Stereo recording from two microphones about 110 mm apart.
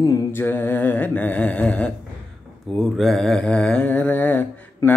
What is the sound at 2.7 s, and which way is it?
Mantra, centre (ahead or behind).